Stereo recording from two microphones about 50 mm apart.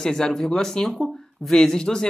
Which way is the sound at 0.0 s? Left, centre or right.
Centre.